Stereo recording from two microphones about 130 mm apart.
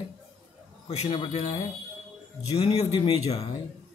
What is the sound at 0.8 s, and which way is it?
A man's voice, 45° left (ahead or behind).